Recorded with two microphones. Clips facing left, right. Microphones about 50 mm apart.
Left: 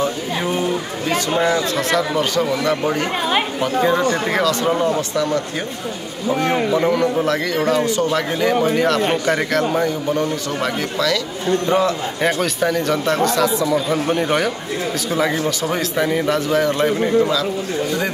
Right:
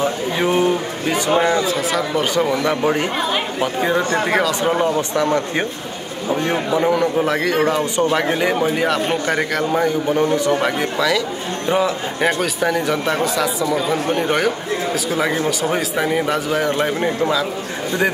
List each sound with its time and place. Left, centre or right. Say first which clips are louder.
0.0 s a sound: right 2 dB; right
1.1 s speech: right 1 dB; right
1.7 s speech: left 1 dB; centre
2.4 s speech: right 1 dB; right
6.7 s speech: even; centre
10.0 s speech: right 4 dB; right; by 14.5 s centre
15.3 s speech: right 1 dB; centre